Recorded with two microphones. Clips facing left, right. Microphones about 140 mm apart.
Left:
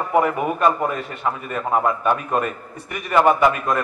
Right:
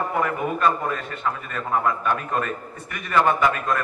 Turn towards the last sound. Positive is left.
turn(degrees=15)  # may be behind; listen again after turning